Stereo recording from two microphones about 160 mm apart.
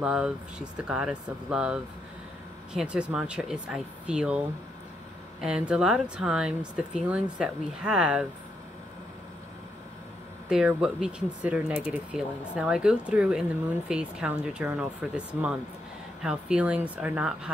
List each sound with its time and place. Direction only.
0.0 s speech: 5° right (ahead or behind)
5.4 s speech: 5° right (ahead or behind)
10.5 s speech: 5° right (ahead or behind)